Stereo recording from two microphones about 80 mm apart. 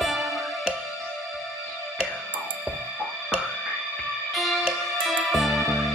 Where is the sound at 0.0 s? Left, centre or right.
Centre.